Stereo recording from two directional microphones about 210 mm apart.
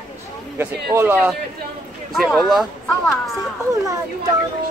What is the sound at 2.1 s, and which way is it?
Child singing, centre (ahead or behind).